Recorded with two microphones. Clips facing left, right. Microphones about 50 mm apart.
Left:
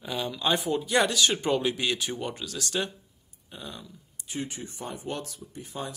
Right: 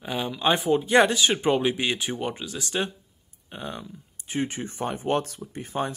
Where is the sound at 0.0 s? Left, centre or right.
Right.